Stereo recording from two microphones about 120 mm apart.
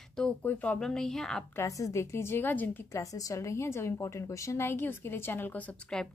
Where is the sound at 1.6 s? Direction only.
25° left (ahead or behind).